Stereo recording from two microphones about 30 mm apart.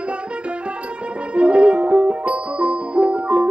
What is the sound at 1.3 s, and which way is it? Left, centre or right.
Music, right.